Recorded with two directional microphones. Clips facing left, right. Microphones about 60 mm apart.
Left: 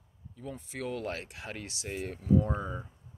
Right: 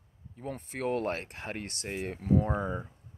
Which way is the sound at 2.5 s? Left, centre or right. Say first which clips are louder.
Right 4 dB; right.